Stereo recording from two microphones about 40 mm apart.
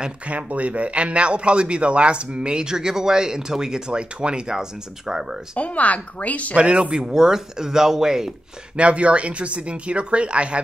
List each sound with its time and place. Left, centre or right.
0.3 s a man's voice: right; by 5.2 s centre
5.6 s speech: left
6.5 s speech: right
7.1 s speech: centre
8.7 s a man's voice: right